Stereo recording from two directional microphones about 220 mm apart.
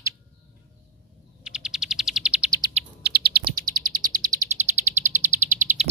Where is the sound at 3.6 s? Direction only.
40° right (ahead or behind).